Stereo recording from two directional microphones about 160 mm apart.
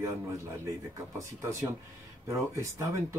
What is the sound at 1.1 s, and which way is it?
Speech, 20° right (ahead or behind).